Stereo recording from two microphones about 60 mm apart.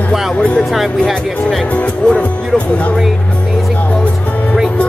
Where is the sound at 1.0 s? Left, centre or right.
Centre.